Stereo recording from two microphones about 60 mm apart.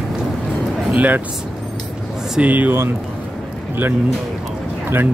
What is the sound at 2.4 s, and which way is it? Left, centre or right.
Speech, right.